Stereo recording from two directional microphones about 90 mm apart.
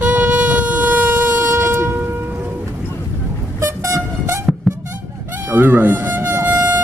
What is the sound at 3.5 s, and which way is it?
Vehicle, 30° right (ahead or behind).